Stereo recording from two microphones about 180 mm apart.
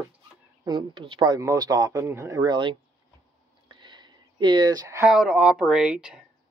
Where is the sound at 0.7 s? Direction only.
25° right (ahead or behind).